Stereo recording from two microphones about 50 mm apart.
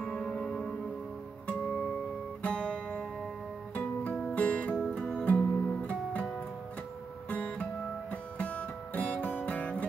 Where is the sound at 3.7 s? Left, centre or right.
Left.